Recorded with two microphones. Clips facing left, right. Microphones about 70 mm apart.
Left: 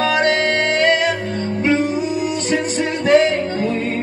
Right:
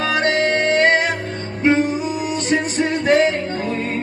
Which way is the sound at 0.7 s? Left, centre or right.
Right.